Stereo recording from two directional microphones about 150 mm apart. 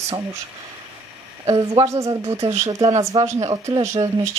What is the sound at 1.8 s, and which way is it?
Speech, 20° right (ahead or behind).